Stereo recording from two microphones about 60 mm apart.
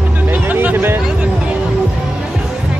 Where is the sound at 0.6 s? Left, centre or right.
Right.